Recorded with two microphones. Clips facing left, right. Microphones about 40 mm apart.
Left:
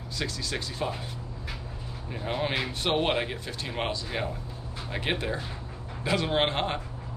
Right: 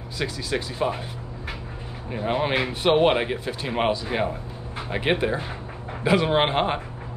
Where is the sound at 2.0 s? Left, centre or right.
Centre.